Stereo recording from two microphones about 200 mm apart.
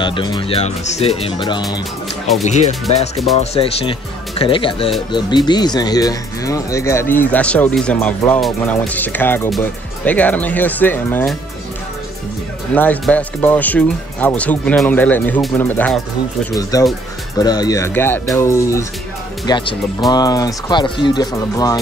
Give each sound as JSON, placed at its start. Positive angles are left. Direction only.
{"t": 0.0, "sound": "speech", "side_deg": 25}
{"t": 12.7, "sound": "speech", "side_deg": 10}